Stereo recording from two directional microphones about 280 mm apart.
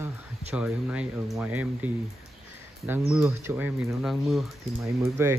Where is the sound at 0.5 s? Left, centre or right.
Centre.